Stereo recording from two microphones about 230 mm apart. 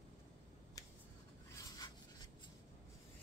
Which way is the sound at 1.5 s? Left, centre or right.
Centre.